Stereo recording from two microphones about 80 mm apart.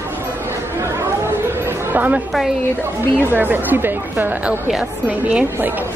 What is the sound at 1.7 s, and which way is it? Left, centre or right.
Chatter, right.